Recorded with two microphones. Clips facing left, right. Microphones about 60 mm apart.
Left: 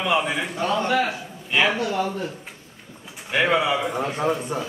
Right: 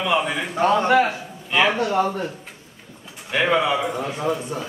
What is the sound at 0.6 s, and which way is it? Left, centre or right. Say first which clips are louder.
A man's voice: right 6 dB; right.